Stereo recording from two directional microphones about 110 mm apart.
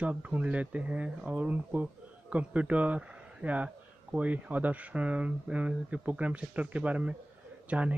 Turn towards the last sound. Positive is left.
turn(degrees=-10)  # may be behind; listen again after turning